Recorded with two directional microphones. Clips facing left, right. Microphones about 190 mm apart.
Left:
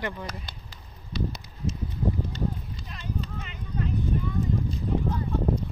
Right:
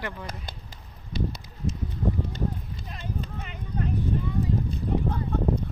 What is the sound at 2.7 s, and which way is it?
Clip-clop, 50° right (ahead or behind).